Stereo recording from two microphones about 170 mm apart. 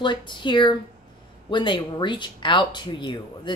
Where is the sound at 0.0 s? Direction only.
30° left (ahead or behind).